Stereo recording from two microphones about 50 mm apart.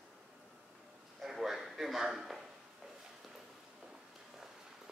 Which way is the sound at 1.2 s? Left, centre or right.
Centre.